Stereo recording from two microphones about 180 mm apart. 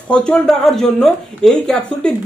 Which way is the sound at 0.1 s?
5° left (ahead or behind).